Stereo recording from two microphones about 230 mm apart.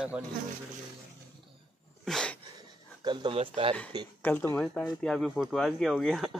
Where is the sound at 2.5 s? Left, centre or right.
Centre.